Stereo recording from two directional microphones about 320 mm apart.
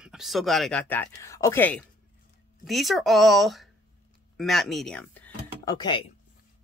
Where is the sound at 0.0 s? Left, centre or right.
Centre.